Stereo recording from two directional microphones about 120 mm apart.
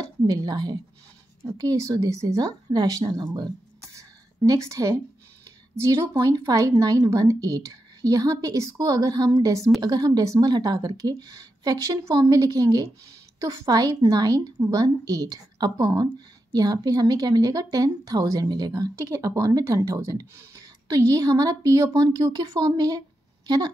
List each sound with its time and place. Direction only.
0.3 s a woman's voice: 30° right (ahead or behind)
3.9 s a sound: 30° right (ahead or behind)
5.8 s a woman's voice: 25° right (ahead or behind)